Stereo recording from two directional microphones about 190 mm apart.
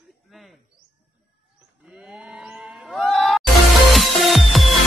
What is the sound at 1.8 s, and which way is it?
Sheep, 5° right (ahead or behind).